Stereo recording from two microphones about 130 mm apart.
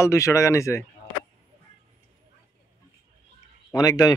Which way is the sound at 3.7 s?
30° left (ahead or behind).